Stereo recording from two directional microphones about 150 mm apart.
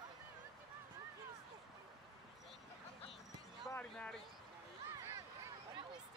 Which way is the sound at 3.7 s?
5° left (ahead or behind).